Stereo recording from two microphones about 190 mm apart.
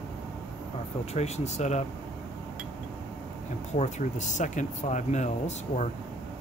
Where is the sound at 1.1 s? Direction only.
35° left (ahead or behind).